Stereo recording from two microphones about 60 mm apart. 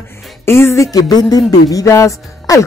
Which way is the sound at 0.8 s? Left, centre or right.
Left.